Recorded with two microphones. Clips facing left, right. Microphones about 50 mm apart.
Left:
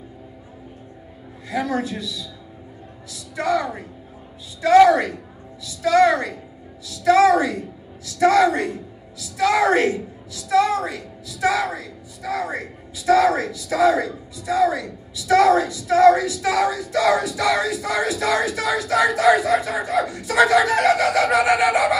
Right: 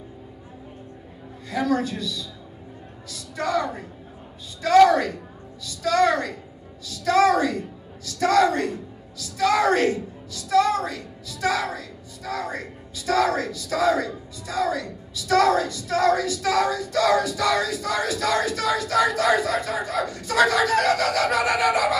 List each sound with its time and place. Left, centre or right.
1.5 s a woman's voice: centre